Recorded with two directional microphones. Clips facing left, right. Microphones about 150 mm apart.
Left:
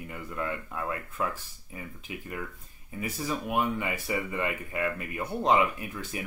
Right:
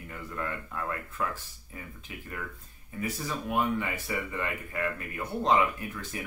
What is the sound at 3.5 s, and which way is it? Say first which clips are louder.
Speech: right 1 dB; 15° left (ahead or behind).